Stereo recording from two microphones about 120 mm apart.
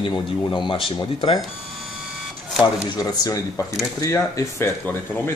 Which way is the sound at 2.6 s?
35° left (ahead or behind).